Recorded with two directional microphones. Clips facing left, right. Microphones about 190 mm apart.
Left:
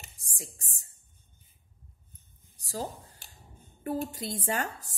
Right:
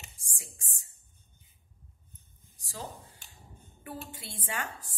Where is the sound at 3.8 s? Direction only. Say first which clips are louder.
Left 10 dB; 40° left (ahead or behind).